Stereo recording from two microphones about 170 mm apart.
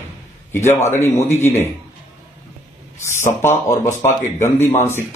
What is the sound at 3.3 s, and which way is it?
Speech, 15° left (ahead or behind).